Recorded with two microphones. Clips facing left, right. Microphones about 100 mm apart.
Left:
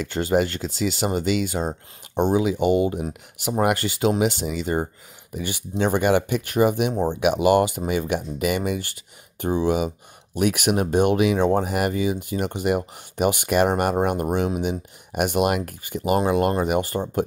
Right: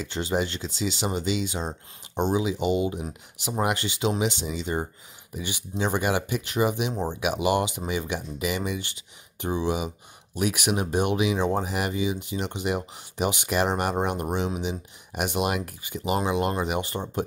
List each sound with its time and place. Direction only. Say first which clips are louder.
0.0 s speech: left 6 dB; 50° left (ahead or behind)